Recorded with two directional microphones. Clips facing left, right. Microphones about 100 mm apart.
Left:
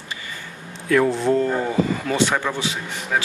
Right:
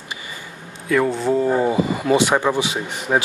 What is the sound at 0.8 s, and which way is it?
Speech, centre (ahead or behind).